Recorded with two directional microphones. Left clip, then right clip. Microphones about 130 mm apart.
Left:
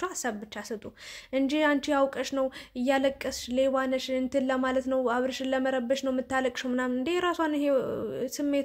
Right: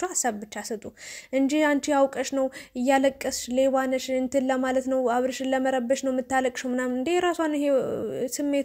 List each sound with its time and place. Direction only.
0.0 s a woman's voice: 35° right (ahead or behind)